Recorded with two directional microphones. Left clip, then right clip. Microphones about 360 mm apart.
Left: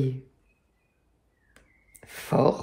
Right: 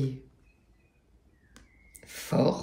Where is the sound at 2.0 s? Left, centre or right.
Centre.